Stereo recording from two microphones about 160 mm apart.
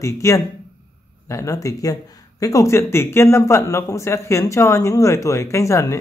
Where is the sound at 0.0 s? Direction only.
20° left (ahead or behind).